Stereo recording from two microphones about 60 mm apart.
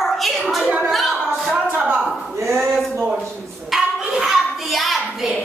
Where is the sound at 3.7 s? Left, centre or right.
Centre.